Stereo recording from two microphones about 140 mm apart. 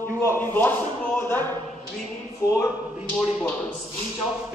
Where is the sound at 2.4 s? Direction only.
25° left (ahead or behind).